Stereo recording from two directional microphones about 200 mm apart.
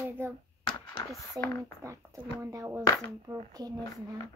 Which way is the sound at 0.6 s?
20° left (ahead or behind).